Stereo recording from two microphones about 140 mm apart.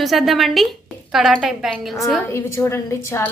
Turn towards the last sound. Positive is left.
turn(degrees=20)  # may be behind; listen again after turning